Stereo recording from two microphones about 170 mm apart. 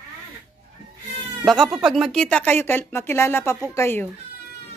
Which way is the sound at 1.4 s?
Centre (ahead or behind).